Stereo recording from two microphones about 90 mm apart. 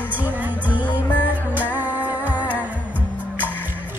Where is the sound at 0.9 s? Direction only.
20° left (ahead or behind).